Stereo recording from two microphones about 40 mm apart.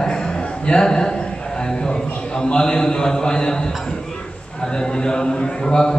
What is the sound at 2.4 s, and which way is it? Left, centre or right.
A man's voice, centre.